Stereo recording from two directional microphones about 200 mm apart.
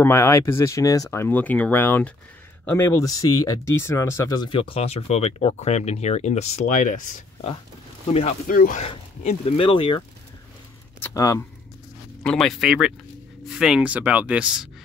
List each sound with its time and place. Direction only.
0.0 s speech: 15° left (ahead or behind); by 8.4 s 30° left (ahead or behind)
8.5 s speech: 45° left (ahead or behind)
8.8 s speech: 30° left (ahead or behind)
11.0 s speech: 15° left (ahead or behind)
12.2 s speech: 5° left (ahead or behind)